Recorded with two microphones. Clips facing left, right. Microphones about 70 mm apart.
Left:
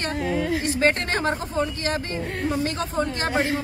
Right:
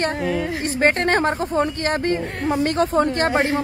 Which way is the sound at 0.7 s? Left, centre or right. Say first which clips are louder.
Right 7 dB; right.